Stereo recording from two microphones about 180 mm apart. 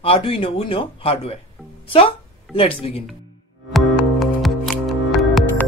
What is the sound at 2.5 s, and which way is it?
Speech, 30° left (ahead or behind).